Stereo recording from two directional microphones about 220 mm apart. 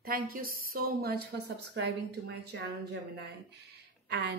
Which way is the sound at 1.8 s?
55° right (ahead or behind).